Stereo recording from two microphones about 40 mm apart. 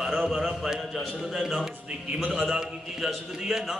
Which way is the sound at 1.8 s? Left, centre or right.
Right.